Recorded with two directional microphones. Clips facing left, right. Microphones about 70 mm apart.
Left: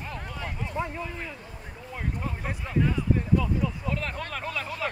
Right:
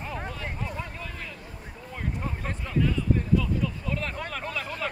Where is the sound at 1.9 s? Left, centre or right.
Centre.